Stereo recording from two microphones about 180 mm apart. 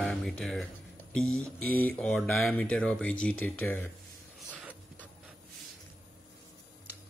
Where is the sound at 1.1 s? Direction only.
5° left (ahead or behind).